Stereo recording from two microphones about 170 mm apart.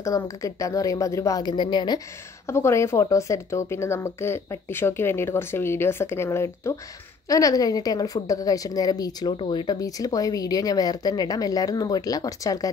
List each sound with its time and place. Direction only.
0.0 s a woman's voice: 20° left (ahead or behind)
2.4 s a woman's voice: 15° left (ahead or behind)